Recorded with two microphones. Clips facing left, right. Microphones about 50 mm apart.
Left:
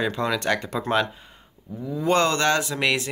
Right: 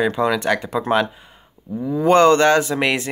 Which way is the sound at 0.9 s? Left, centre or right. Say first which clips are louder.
Right 4 dB; centre.